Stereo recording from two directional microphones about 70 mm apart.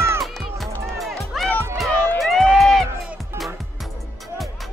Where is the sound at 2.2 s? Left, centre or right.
Centre.